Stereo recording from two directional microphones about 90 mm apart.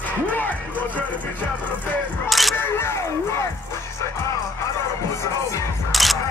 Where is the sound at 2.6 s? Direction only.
25° left (ahead or behind).